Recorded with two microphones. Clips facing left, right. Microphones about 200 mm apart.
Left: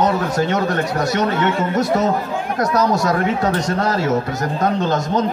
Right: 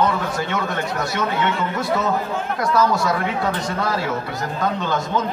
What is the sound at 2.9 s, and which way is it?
A man's voice, 40° left (ahead or behind).